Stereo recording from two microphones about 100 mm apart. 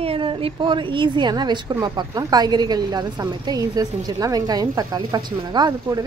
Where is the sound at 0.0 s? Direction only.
70° right (ahead or behind).